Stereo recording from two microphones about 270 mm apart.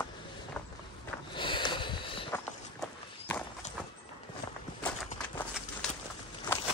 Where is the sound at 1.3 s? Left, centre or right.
Centre.